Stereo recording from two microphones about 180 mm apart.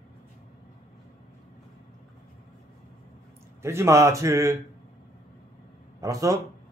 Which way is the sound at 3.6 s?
15° right (ahead or behind).